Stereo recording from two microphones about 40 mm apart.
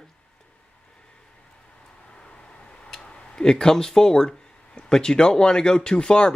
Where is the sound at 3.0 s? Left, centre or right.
Left.